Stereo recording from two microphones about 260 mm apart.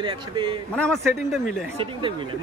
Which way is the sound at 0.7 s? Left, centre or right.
Centre.